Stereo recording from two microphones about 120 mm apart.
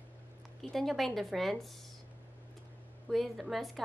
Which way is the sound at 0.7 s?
Centre (ahead or behind).